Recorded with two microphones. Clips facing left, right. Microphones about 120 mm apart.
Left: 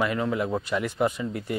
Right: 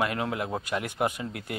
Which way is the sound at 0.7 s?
55° right (ahead or behind).